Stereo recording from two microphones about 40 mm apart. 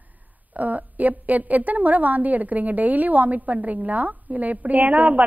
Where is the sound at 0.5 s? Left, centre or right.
Right.